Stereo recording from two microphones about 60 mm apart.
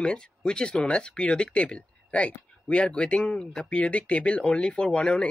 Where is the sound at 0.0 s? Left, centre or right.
Centre.